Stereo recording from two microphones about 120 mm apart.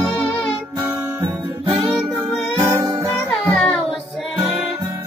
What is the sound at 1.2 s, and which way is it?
Music, 45° right (ahead or behind).